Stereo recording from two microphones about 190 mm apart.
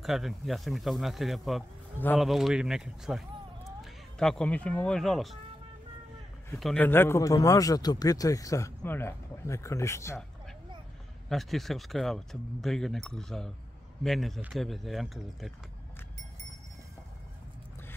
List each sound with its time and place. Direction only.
0.0 s speech: centre (ahead or behind)
6.5 s a man's voice: centre (ahead or behind)
11.2 s speech: centre (ahead or behind)